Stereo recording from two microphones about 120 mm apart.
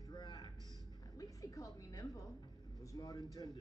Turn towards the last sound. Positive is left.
turn(degrees=30)  # may be behind; listen again after turning